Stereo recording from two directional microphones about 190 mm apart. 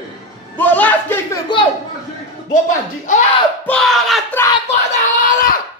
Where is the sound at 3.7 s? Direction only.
Centre (ahead or behind).